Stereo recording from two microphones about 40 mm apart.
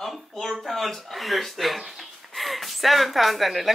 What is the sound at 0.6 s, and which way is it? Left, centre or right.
Speech, centre.